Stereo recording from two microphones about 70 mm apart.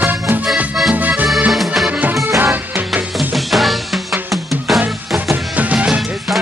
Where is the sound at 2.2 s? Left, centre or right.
Right.